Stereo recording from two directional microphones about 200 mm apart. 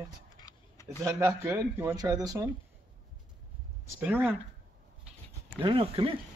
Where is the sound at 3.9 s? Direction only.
10° right (ahead or behind).